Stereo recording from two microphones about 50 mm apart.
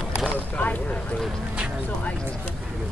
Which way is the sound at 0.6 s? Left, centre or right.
Left.